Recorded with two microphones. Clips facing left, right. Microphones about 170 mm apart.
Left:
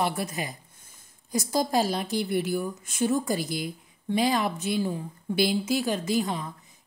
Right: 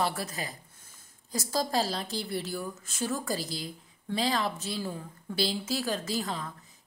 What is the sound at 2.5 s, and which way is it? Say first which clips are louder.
A woman's voice: left 7 dB; 20° left (ahead or behind).